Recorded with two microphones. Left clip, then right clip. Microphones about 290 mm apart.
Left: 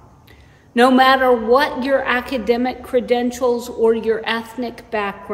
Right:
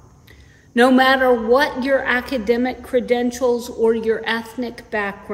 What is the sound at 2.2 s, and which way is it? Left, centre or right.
Speech, centre.